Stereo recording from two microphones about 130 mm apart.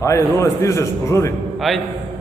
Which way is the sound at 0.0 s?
20° left (ahead or behind).